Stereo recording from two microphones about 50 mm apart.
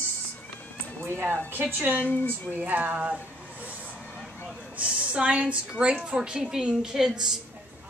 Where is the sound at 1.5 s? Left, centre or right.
Right; by 7.3 s centre.